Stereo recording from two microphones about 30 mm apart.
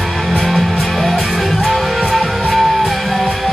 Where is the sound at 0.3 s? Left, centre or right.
Centre.